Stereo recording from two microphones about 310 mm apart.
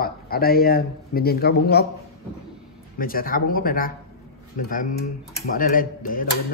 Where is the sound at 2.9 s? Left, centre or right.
Left.